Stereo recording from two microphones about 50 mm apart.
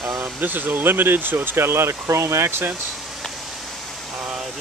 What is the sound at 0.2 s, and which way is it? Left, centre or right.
Speech, right.